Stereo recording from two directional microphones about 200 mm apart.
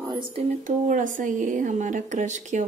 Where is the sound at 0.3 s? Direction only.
35° right (ahead or behind).